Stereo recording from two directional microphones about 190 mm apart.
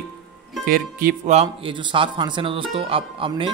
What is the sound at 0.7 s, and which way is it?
Speech, 50° right (ahead or behind).